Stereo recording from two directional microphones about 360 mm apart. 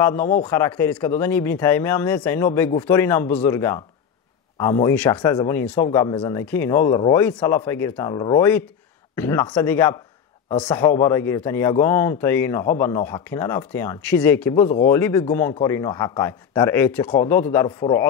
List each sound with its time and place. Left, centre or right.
0.0 s speech: centre
14.6 s speech: centre
14.9 s speech: centre